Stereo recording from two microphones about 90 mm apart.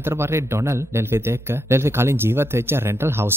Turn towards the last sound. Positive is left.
turn(degrees=-25)  # may be behind; listen again after turning